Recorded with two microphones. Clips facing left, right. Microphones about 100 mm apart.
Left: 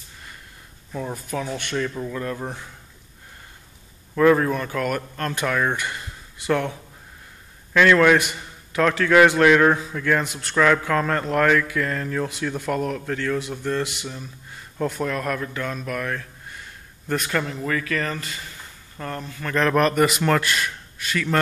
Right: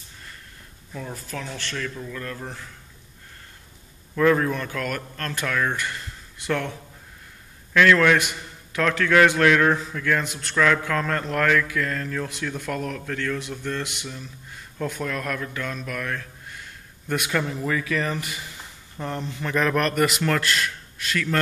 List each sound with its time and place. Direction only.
1.1 s a man's voice: 15° left (ahead or behind)
4.1 s speech: 5° left (ahead or behind)
5.9 s a sound: 5° left (ahead or behind)
7.7 s a man's voice: 10° left (ahead or behind); by 19.5 s 20° right (ahead or behind)
19.5 s speech: centre (ahead or behind)